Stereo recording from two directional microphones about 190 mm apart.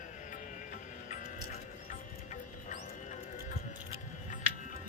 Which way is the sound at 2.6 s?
40° left (ahead or behind).